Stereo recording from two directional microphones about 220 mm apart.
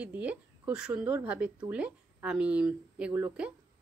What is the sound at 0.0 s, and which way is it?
A woman's voice, 5° right (ahead or behind).